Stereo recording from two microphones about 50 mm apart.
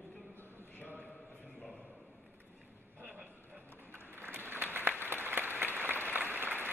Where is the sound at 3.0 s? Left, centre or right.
Right.